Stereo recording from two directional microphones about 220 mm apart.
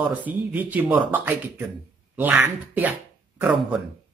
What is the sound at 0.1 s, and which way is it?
Speech, 5° right (ahead or behind).